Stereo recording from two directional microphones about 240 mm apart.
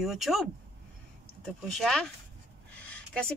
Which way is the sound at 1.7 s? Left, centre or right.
Centre.